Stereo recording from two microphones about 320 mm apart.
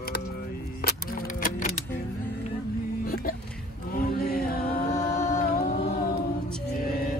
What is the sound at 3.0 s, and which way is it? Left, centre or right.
Music, left.